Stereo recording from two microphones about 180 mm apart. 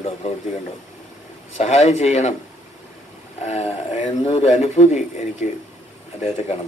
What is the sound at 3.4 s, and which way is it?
A man's voice, 35° left (ahead or behind).